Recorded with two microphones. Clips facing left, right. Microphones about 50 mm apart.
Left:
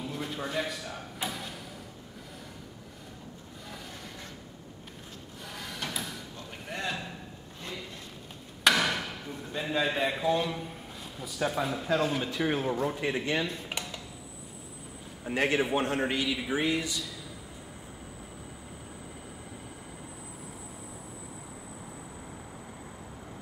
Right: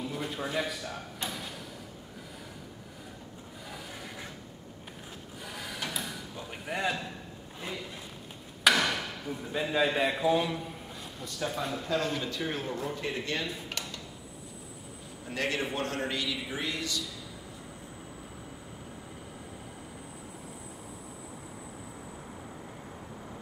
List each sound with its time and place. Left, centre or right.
0.0 s a sound: centre
3.6 s vehicle: centre
5.4 s a sound: centre
8.6 s speech: centre
13.7 s dishes: centre
15.2 s speech: centre